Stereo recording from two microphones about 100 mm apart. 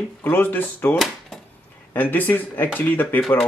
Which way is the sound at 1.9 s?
20° left (ahead or behind).